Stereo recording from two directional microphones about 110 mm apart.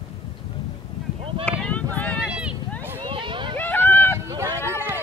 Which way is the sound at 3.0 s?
50° right (ahead or behind).